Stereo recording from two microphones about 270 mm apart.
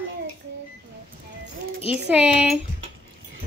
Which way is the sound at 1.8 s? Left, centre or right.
Centre.